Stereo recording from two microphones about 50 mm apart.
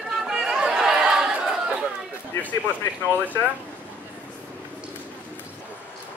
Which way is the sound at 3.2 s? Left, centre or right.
Left.